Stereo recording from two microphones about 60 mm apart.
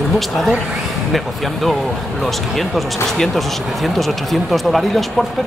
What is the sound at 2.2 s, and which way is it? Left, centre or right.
Speech, centre.